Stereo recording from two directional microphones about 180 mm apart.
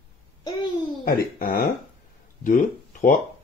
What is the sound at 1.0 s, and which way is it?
Speech, 55° left (ahead or behind).